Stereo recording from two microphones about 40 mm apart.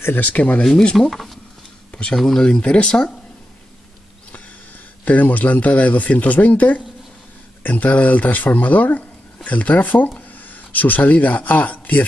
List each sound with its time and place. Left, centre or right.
0.2 s speech: left
1.1 s speech: centre
1.9 s a sound: left
2.1 s speech: centre
5.0 s speech: left